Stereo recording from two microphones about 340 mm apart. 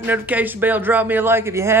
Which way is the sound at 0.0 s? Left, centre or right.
Centre.